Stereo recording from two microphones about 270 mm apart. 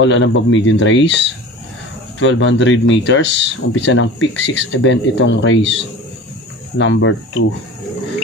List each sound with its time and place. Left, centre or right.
0.0 s speech: left
6.8 s speech: left